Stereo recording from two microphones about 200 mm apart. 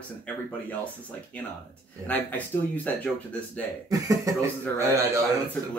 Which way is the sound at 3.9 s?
15° right (ahead or behind).